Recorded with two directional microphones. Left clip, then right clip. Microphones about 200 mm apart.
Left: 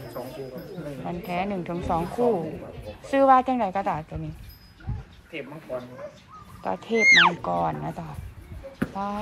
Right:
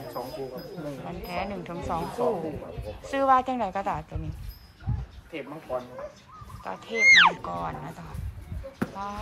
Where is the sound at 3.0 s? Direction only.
10° right (ahead or behind).